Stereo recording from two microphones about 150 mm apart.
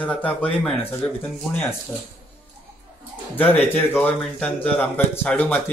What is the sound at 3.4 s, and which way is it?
Speech, 10° left (ahead or behind).